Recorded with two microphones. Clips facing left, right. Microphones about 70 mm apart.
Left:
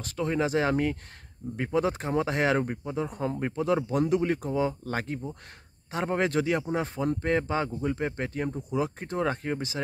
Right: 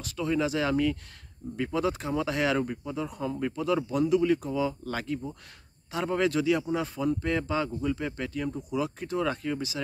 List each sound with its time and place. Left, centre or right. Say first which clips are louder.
0.0 s speech: even; left